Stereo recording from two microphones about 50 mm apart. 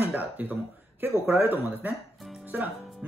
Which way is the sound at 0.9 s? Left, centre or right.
Right.